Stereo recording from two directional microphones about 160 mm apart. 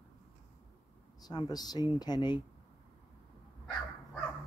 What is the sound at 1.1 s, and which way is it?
Speech, 25° left (ahead or behind).